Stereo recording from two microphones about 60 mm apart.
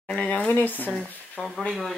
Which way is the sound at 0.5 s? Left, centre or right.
Left.